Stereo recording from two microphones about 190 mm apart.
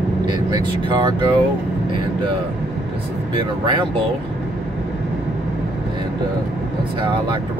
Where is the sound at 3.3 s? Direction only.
25° right (ahead or behind).